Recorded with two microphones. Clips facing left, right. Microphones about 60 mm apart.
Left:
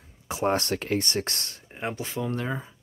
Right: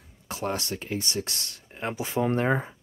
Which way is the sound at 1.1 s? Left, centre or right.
Left.